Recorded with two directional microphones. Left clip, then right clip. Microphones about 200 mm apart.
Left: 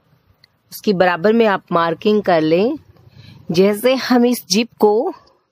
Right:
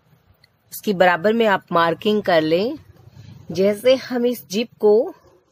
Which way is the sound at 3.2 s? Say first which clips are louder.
Left 4 dB; 35° left (ahead or behind).